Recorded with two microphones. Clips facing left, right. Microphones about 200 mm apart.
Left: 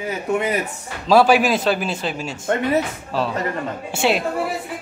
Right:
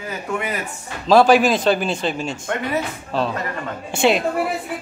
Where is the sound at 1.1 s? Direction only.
10° left (ahead or behind).